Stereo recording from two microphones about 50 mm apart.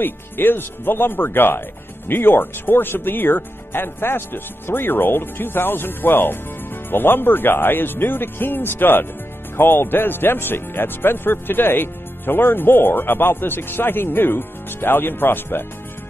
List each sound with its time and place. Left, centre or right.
0.0 s speech: left